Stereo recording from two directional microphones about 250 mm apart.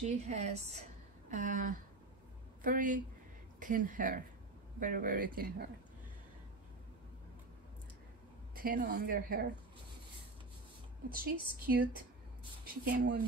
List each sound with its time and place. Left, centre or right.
0.0 s a woman's voice: right
8.5 s speech: right
11.1 s speech: right